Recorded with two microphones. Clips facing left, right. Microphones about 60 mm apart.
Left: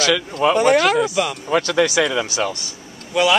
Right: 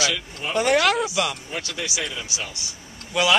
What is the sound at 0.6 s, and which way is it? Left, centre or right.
Speech, centre.